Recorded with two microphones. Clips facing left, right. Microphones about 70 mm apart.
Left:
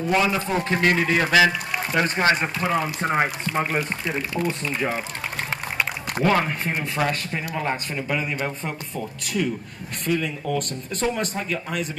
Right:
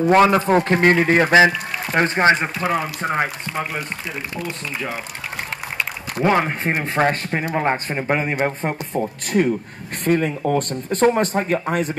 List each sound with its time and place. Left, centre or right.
0.1 s speech: right
2.3 s speech: centre
3.5 s speech: left
6.2 s speech: right